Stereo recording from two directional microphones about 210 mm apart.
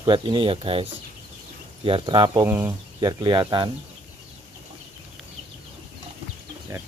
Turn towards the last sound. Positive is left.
turn(degrees=-15)  # may be behind; listen again after turning